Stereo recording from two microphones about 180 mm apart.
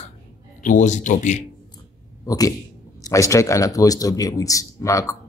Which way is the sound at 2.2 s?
20° left (ahead or behind).